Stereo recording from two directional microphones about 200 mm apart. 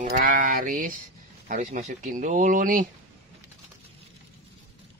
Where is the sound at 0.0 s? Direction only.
40° right (ahead or behind).